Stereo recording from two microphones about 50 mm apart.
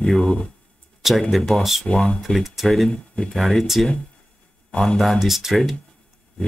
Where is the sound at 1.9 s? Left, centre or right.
Left.